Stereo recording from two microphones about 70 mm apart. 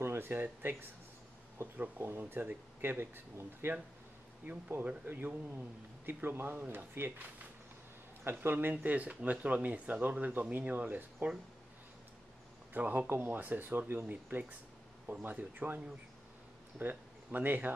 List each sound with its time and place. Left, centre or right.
0.0 s speech: right
12.7 s speech: right
16.8 s speech: right